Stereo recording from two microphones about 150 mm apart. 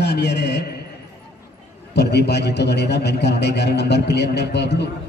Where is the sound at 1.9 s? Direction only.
90° left.